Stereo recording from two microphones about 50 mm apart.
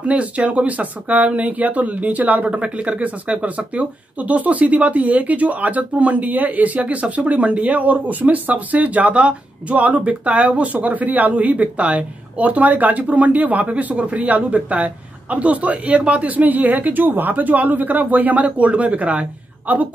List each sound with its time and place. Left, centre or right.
0.0 s a woman's voice: right